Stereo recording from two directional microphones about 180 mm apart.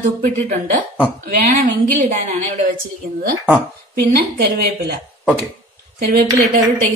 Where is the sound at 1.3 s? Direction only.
50° right (ahead or behind).